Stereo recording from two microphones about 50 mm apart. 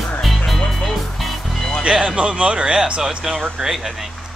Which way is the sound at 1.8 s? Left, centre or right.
Centre.